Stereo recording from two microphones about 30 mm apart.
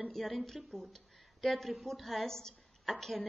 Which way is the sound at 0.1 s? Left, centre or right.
Centre.